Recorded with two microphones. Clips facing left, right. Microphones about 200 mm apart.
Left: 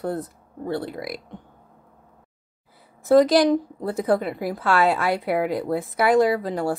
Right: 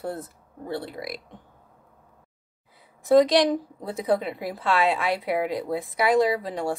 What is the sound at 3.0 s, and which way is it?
Speech, centre (ahead or behind).